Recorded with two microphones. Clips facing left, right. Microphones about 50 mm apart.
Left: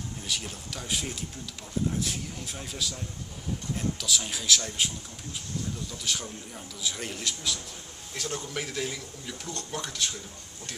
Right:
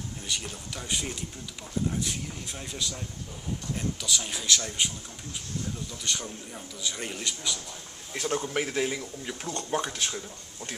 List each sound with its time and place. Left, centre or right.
0.2 s a man's voice: centre
8.1 s speech: right